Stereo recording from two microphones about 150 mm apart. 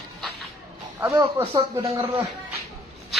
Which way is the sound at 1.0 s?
15° right (ahead or behind).